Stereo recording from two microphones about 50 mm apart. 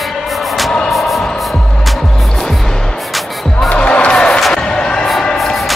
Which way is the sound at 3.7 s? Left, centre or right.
Left.